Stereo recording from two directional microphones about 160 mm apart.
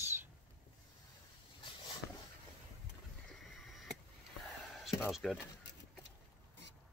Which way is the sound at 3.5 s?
Centre (ahead or behind).